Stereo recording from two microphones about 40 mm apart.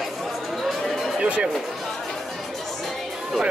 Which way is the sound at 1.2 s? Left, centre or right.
Right.